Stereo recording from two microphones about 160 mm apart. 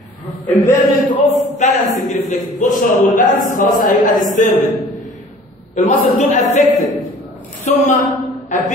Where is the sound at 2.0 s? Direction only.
55° left (ahead or behind).